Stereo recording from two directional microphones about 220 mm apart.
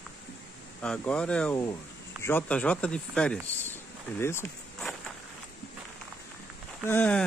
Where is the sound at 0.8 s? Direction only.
5° left (ahead or behind).